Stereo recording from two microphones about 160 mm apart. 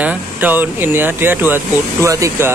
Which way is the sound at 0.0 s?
10° right (ahead or behind).